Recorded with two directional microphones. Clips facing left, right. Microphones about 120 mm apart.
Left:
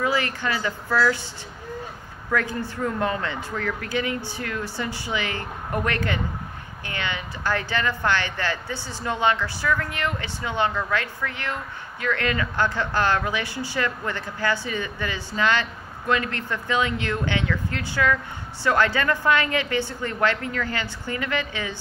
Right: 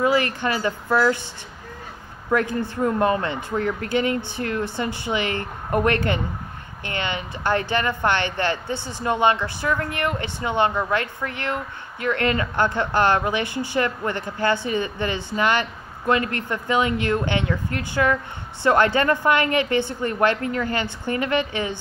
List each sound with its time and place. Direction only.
0.0 s a woman's voice: 20° right (ahead or behind)
2.3 s a woman's voice: 20° right (ahead or behind)